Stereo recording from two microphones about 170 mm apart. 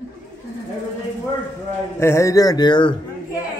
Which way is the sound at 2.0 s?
15° left (ahead or behind).